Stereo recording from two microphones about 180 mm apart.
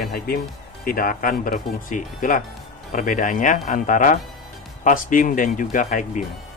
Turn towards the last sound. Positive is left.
turn(degrees=45)  # may be behind; listen again after turning